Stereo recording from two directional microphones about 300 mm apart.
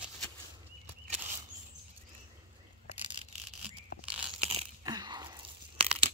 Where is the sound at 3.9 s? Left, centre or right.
Left.